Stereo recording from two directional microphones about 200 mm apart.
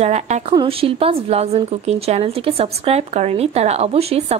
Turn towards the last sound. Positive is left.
turn(degrees=-30)  # may be behind; listen again after turning